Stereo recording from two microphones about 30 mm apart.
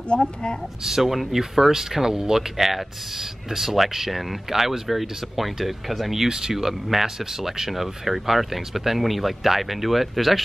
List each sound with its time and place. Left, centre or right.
0.1 s a woman's voice: left
0.8 s speech: centre
2.5 s speech: centre
6.2 s speech: right
6.5 s speech: centre